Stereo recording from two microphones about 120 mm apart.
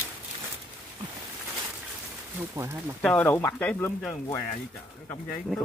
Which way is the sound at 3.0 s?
10° left (ahead or behind).